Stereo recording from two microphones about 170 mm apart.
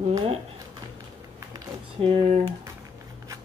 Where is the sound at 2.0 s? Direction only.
35° right (ahead or behind).